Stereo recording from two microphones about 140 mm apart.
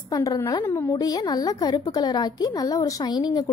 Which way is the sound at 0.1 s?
25° left (ahead or behind).